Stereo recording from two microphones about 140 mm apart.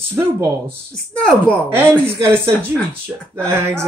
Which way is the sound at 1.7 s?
15° right (ahead or behind).